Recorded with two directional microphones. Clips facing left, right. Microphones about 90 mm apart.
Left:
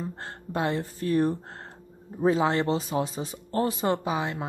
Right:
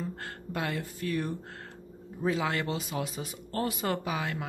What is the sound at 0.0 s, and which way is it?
Speech, 25° left (ahead or behind).